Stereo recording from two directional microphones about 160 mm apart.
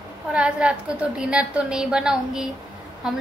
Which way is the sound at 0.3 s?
5° right (ahead or behind).